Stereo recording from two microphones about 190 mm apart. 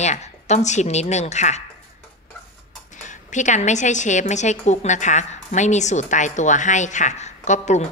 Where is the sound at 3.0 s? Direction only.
40° left (ahead or behind).